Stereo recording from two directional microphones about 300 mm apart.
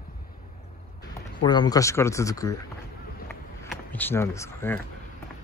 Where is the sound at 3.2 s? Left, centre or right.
Centre.